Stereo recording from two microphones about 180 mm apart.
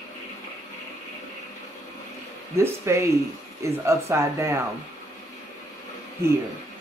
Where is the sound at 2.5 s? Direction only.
15° right (ahead or behind).